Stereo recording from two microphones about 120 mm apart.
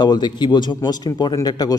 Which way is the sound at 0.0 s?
35° left (ahead or behind).